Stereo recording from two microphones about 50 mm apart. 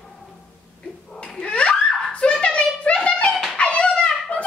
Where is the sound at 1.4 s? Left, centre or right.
Left.